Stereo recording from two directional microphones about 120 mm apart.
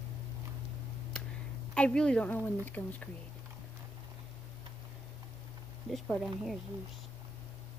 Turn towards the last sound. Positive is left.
turn(degrees=0)  # may be behind; listen again after turning